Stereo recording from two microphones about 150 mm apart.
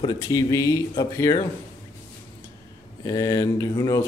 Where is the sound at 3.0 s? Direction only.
25° left (ahead or behind).